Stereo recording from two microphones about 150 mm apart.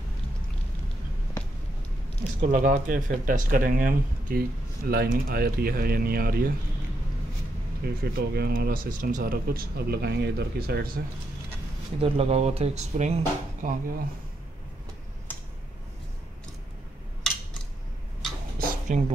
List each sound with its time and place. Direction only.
2.4 s speech: 60° right (ahead or behind); by 6.5 s 85° right
7.8 s speech: 90° right
12.0 s speech: 40° right (ahead or behind); by 13.9 s 60° right (ahead or behind)
15.3 s tick-tock: 15° left (ahead or behind)
18.9 s speech: 55° right (ahead or behind)